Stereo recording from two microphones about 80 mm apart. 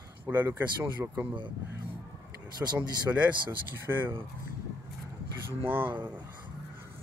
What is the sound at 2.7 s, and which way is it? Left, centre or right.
Speech, centre.